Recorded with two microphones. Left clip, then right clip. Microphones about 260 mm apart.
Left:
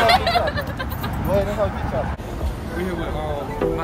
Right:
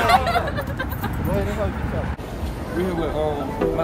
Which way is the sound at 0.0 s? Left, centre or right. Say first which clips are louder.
Left 1 dB; centre.